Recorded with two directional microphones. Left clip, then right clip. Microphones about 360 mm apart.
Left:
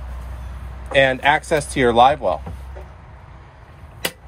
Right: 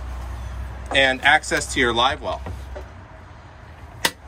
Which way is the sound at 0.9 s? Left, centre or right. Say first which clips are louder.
Left 1 dB; centre.